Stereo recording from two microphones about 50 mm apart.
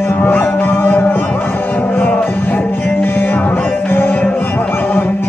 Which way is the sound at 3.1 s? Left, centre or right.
Left.